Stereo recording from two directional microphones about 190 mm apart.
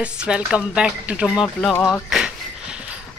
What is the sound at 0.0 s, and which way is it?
Speech, 5° right (ahead or behind).